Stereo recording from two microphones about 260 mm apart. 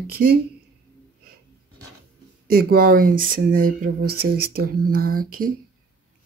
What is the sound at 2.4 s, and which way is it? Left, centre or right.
Speech, right.